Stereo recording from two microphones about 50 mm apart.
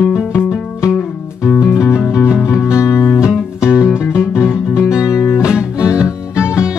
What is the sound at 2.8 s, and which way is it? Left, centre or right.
Music, left.